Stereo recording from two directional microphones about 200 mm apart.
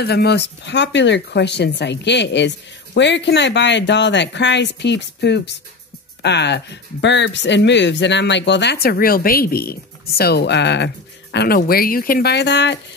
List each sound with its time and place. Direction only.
0.0 s speech: 55° left (ahead or behind)
11.3 s speech: 50° left (ahead or behind)